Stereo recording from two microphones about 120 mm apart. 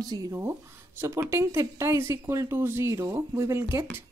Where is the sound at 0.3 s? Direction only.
20° right (ahead or behind).